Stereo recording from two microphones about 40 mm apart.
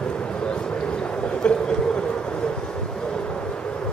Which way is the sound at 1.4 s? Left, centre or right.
Left.